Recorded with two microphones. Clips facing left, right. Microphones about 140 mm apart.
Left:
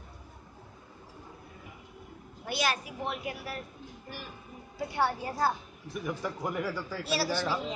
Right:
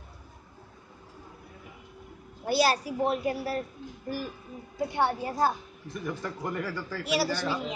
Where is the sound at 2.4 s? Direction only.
35° right (ahead or behind).